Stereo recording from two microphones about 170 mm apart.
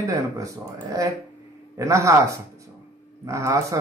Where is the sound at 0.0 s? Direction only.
20° right (ahead or behind).